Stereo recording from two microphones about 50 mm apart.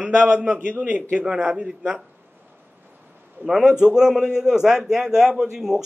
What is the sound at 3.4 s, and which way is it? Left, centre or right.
A man's voice, centre.